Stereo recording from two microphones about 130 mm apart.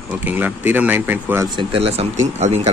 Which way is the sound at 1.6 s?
45° right (ahead or behind).